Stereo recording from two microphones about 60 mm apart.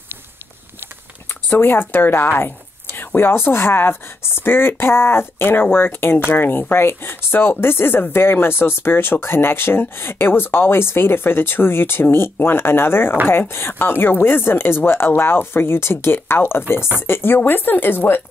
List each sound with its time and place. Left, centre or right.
1.5 s speech: left